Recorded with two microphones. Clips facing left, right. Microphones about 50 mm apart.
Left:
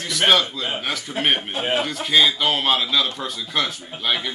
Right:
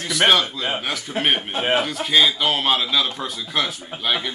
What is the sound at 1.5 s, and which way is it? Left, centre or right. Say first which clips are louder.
Speech: right 2 dB; right.